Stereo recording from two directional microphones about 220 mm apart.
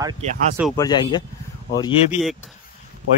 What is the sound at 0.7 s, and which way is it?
Speech, 20° left (ahead or behind).